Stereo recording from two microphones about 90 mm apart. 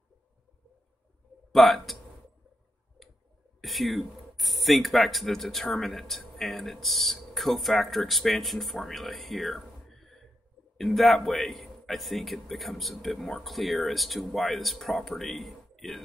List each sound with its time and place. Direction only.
1.5 s speech: centre (ahead or behind)
3.6 s speech: centre (ahead or behind)